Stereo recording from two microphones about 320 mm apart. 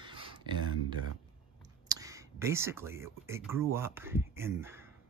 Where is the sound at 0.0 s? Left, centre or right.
Centre.